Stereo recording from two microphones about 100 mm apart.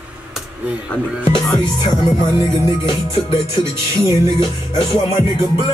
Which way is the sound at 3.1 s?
60° left (ahead or behind).